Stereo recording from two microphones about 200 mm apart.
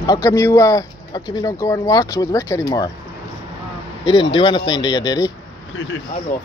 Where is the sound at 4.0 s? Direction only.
25° left (ahead or behind).